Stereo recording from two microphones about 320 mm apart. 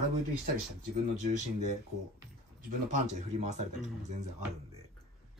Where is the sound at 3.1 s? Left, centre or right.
Right.